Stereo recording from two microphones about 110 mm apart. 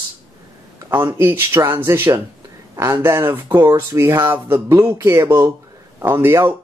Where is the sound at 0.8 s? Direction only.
20° right (ahead or behind).